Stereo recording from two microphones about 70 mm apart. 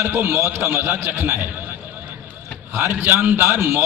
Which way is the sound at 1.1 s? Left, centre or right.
Right.